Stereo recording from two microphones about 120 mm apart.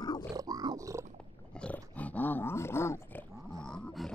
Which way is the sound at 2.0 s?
15° left (ahead or behind).